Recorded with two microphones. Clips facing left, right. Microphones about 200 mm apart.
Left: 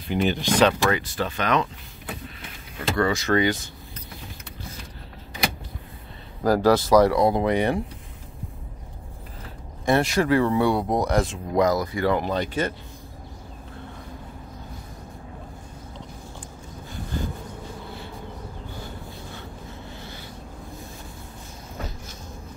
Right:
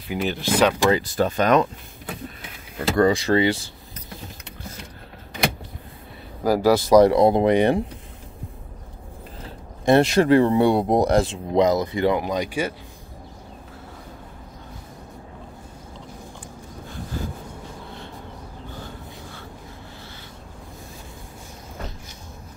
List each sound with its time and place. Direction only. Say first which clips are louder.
0.1 s speech: left 1 dB; 5° right (ahead or behind)
0.9 s speech: right 6 dB; 35° right (ahead or behind)
3.0 s speech: right 4 dB; 35° right (ahead or behind)
6.4 s speech: right 1 dB; 10° right (ahead or behind)
7.0 s speech: right 4 dB; 25° right (ahead or behind)
9.4 s speech: right 5 dB; 25° right (ahead or behind)
12.2 s speech: right 1 dB; 10° right (ahead or behind)